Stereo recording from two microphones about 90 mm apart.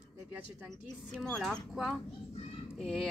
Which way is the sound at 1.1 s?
5° left (ahead or behind).